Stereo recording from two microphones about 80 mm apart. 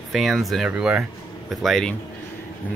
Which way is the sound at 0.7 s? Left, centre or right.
Centre.